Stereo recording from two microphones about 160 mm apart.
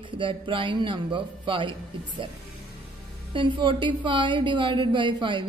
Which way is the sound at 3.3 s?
30° right (ahead or behind).